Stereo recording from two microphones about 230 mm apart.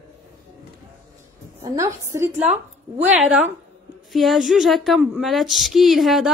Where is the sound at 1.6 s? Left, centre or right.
Centre.